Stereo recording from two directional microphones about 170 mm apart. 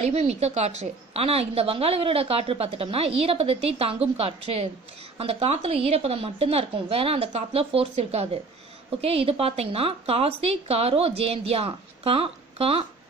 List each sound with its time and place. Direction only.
0.0 s a woman's voice: 40° right (ahead or behind)